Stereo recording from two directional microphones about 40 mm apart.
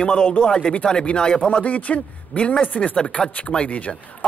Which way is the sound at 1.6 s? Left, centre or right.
Left.